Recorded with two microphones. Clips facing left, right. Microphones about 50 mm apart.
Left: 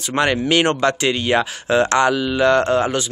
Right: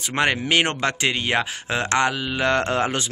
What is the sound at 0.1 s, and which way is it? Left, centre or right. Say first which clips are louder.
Speech: left 3 dB; centre.